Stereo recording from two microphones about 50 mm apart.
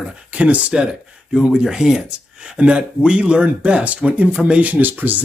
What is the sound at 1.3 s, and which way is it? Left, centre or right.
Speech, centre.